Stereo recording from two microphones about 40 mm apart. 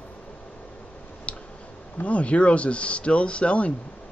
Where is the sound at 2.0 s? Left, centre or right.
Left.